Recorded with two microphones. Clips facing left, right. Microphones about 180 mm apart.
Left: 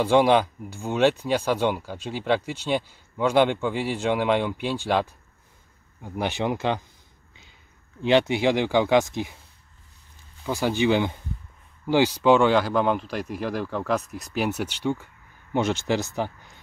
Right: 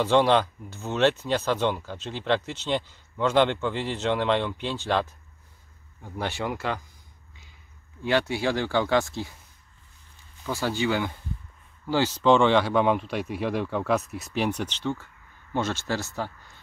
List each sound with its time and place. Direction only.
0.0 s speech: 10° left (ahead or behind)
8.0 s speech: 20° left (ahead or behind)
10.4 s speech: 15° left (ahead or behind)